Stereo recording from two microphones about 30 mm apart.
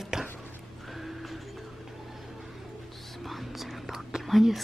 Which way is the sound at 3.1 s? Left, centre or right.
Centre.